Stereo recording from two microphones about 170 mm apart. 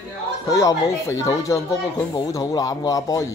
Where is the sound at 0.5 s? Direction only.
20° left (ahead or behind).